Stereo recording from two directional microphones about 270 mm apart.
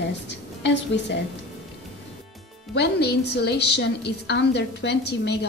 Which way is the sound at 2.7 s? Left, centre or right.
Left.